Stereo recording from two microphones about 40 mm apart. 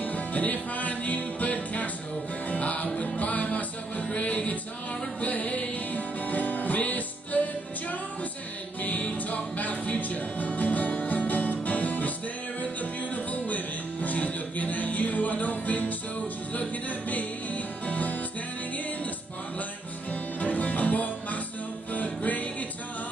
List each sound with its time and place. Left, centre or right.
0.0 s music: left
9.3 s music: left
13.1 s music: left
17.8 s music: left
20.1 s music: left